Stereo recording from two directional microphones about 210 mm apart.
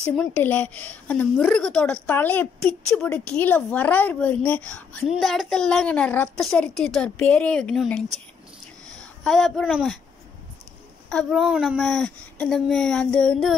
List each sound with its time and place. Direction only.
0.1 s a woman's voice: 5° left (ahead or behind)
9.2 s a woman's voice: centre (ahead or behind)
11.1 s a woman's voice: centre (ahead or behind)